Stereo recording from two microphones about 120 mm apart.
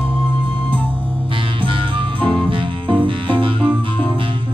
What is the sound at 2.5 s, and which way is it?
Music, 45° right (ahead or behind).